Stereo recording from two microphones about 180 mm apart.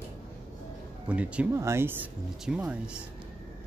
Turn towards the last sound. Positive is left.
turn(degrees=-5)  # may be behind; listen again after turning